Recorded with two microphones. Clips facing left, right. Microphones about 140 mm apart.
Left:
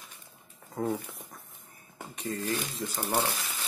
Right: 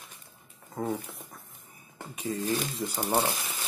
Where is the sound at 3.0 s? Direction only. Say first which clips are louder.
Right 2 dB; 15° right (ahead or behind).